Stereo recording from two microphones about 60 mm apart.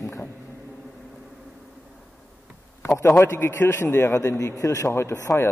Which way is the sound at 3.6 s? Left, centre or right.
Left.